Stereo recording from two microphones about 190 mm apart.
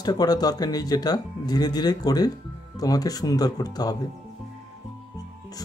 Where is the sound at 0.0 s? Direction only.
20° left (ahead or behind).